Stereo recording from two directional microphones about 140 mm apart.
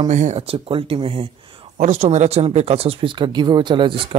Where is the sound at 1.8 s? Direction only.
55° right (ahead or behind).